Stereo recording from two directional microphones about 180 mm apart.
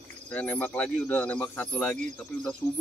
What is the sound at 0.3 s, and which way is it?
Speech, 10° left (ahead or behind).